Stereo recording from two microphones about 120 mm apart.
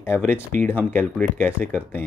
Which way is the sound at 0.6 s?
15° left (ahead or behind).